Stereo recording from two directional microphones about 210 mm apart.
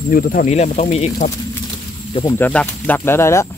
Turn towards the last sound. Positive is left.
turn(degrees=10)  # may be behind; listen again after turning